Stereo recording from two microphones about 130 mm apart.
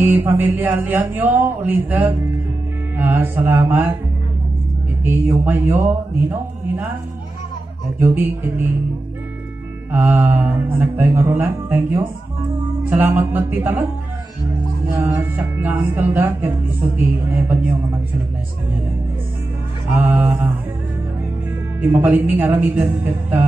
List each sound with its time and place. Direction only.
0.0 s speech: 15° right (ahead or behind)
5.0 s speech: 15° right (ahead or behind)
8.0 s speech: 15° right (ahead or behind)
9.9 s speech: 15° right (ahead or behind)
15.0 s speech: 15° right (ahead or behind)
19.9 s speech: 15° right (ahead or behind)
21.8 s speech: 15° right (ahead or behind)